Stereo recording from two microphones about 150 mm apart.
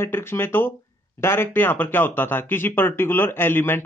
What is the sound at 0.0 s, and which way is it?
Speech, 15° left (ahead or behind).